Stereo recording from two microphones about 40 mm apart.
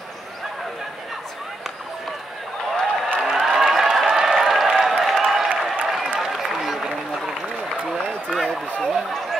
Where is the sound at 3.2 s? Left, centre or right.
Centre.